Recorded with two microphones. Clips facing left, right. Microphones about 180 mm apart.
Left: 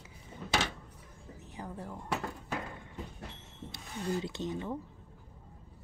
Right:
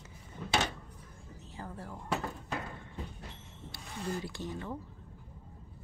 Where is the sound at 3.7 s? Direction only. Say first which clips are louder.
Left 3 dB; 20° left (ahead or behind).